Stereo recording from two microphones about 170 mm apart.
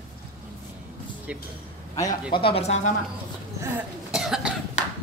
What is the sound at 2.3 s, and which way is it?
Speech, 35° left (ahead or behind).